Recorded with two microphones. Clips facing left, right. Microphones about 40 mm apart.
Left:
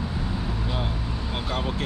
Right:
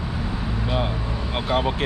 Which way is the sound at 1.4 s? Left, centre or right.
Right.